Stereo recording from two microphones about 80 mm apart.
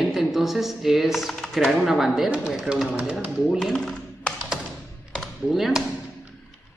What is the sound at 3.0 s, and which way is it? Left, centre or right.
Speech, centre.